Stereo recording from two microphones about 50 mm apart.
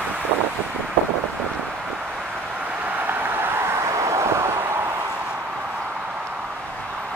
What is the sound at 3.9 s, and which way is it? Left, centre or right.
Vehicle, right.